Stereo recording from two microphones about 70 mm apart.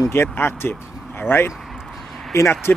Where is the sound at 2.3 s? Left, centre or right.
Left.